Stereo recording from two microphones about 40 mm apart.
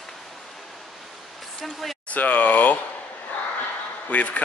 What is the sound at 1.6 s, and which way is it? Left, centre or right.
Speech, centre.